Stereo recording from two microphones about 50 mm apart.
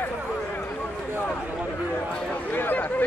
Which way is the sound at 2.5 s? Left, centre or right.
Left.